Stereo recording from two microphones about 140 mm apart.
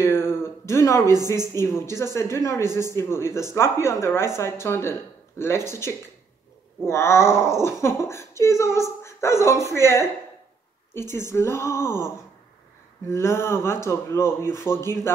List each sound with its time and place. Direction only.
0.1 s a sound: 15° left (ahead or behind)
1.0 s a woman's voice: 25° right (ahead or behind)
1.3 s speech: 20° left (ahead or behind)
13.1 s speech: 20° left (ahead or behind)